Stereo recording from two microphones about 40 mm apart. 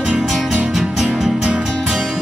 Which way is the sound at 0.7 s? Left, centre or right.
Centre.